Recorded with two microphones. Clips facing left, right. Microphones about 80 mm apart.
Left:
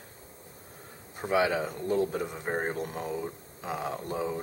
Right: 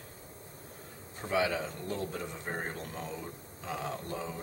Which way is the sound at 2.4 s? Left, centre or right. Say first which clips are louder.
Left 7 dB; left.